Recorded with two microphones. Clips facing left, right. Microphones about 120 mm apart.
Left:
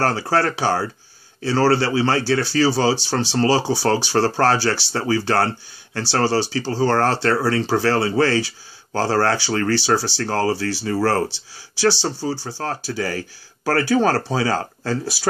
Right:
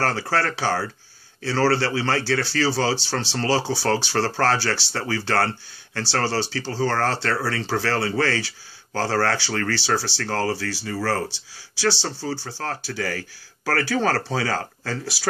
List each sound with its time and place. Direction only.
0.0 s speech: 20° left (ahead or behind)
10.9 s speech: 40° left (ahead or behind)
11.2 s speech: 20° left (ahead or behind)
13.2 s speech: 35° left (ahead or behind)
13.8 s speech: 20° left (ahead or behind)